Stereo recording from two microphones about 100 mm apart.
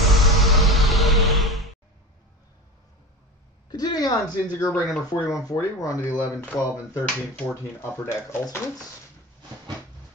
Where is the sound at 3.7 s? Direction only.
45° left (ahead or behind).